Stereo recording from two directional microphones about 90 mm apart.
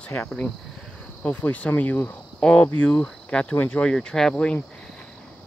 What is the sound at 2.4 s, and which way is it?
Cricket, 10° left (ahead or behind).